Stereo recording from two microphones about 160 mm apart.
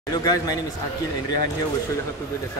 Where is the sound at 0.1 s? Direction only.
20° left (ahead or behind).